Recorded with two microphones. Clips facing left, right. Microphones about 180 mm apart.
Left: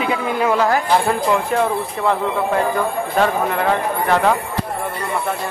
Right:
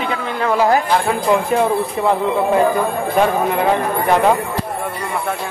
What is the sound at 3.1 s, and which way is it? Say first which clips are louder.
Speech: right 2 dB; 15° right (ahead or behind).